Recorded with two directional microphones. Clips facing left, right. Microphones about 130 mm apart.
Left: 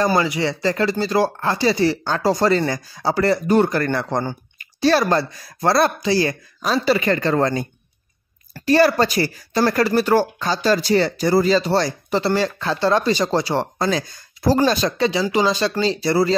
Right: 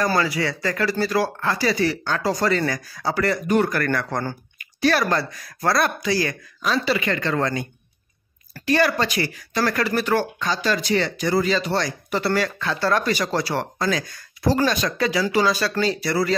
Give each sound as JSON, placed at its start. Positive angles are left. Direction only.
{"t": 0.0, "sound": "speech", "side_deg": 20}
{"t": 8.6, "sound": "speech", "side_deg": 35}